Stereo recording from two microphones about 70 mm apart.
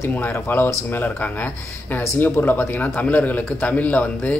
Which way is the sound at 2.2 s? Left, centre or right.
Left.